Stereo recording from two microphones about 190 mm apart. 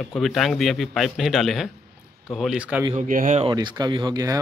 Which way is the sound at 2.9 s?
40° right (ahead or behind).